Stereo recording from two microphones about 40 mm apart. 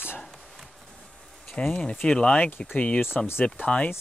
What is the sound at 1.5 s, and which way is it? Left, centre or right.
Speech, left.